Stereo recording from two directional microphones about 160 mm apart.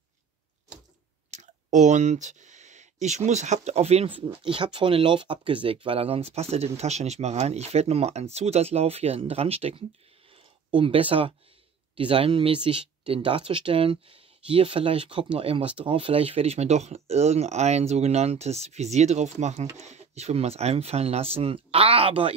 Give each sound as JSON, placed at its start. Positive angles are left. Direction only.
{"t": 1.3, "sound": "speech", "side_deg": -50}